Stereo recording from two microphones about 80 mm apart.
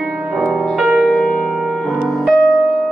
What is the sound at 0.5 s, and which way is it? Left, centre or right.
Music, centre.